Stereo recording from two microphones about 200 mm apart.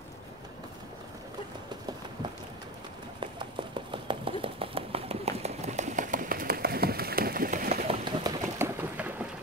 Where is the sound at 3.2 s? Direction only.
25° right (ahead or behind); by 7.8 s 40° right (ahead or behind).